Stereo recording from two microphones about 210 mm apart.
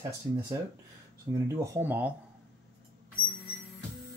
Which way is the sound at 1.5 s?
15° right (ahead or behind).